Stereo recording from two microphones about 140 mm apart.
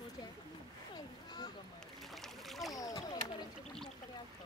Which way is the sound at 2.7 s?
25° left (ahead or behind).